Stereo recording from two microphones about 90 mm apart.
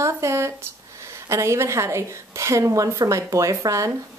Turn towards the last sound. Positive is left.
turn(degrees=-35)  # may be behind; listen again after turning